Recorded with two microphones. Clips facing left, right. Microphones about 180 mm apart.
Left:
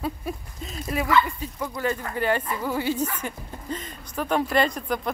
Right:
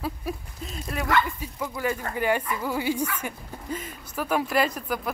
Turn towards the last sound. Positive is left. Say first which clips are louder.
# left 2 dB
turn(degrees=-5)  # may be behind; listen again after turning